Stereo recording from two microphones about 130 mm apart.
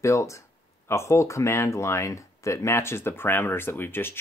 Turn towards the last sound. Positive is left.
turn(degrees=15)  # may be behind; listen again after turning